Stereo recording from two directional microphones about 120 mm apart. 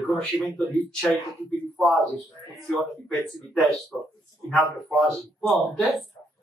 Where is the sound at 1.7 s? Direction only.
Centre (ahead or behind).